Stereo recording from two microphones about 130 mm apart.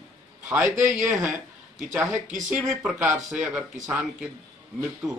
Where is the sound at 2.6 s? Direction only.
Centre (ahead or behind).